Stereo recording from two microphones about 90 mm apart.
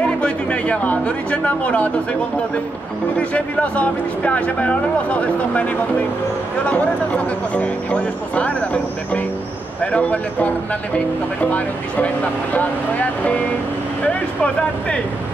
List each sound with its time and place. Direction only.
0.2 s speech: 15° left (ahead or behind)
3.2 s speech: 15° left (ahead or behind)
9.8 s speech: 15° left (ahead or behind)
12.5 s speech: 15° left (ahead or behind)